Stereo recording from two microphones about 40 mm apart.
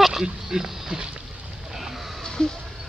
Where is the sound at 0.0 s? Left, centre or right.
Centre.